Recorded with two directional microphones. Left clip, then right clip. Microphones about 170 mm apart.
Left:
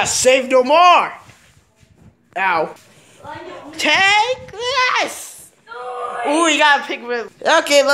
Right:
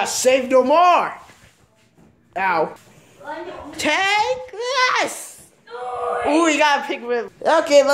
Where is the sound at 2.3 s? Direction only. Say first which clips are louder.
Left 2 dB; 5° right (ahead or behind).